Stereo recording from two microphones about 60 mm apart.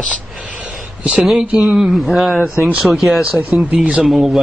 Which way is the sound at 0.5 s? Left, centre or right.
Centre.